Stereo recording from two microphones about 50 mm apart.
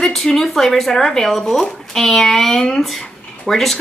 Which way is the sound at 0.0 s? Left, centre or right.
Centre.